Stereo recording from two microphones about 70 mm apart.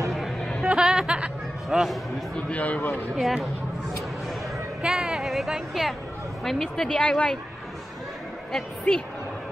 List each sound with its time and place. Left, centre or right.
0.1 s a sound: centre
0.6 s music: centre
2.3 s a man's voice: left
3.2 s speech: centre
4.8 s speech: centre
8.9 s a man's voice: left